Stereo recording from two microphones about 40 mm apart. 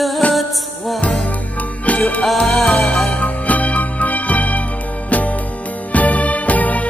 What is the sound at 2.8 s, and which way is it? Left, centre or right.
Music, left.